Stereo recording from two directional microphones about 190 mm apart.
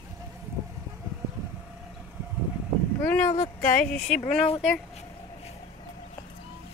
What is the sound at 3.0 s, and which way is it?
Speech, 10° left (ahead or behind).